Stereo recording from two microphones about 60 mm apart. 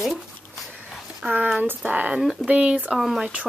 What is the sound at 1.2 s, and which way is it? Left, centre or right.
Speech, right.